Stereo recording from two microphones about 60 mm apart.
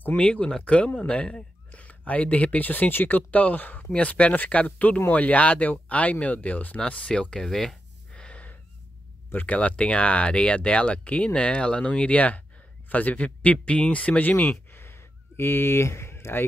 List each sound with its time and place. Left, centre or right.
0.0 s speech: left
8.1 s wheeze: centre
9.3 s speech: left
9.6 s speech: centre
14.7 s a sound: left